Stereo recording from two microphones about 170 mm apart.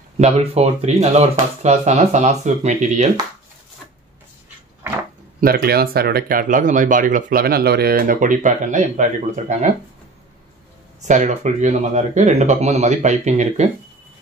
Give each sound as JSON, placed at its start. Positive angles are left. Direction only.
{"t": 0.2, "sound": "speech", "side_deg": -40}
{"t": 5.4, "sound": "speech", "side_deg": -60}
{"t": 11.1, "sound": "speech", "side_deg": -45}